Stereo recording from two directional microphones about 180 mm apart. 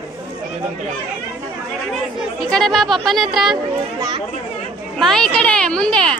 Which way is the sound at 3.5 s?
25° right (ahead or behind).